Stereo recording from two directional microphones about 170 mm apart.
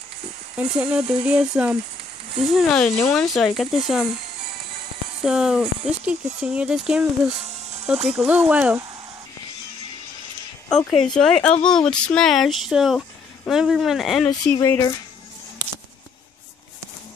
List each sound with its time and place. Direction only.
0.6 s speech: 5° right (ahead or behind)
5.2 s speech: 5° right (ahead or behind)
10.7 s speech: 5° left (ahead or behind)
14.5 s speech: 15° left (ahead or behind)